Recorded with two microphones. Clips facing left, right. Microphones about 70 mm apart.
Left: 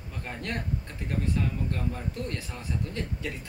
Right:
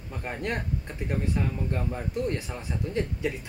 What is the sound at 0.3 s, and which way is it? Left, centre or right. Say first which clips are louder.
Speech: right 3 dB; right.